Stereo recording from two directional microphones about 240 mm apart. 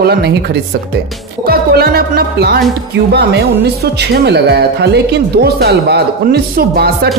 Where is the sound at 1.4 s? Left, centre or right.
Right.